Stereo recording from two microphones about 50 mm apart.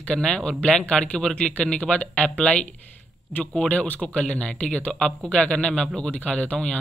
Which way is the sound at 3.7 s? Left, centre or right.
Left.